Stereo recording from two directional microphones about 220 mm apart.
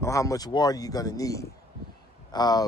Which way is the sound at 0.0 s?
15° left (ahead or behind).